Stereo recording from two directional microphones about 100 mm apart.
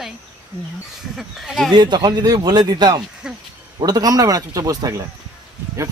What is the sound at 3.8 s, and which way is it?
Speech, 40° right (ahead or behind).